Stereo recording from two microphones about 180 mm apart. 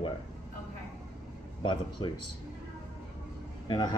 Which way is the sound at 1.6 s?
25° left (ahead or behind).